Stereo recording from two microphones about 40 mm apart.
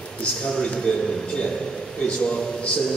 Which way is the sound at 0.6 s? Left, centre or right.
Centre.